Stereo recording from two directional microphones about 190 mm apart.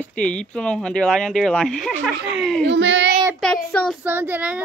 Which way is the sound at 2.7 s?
70° right (ahead or behind).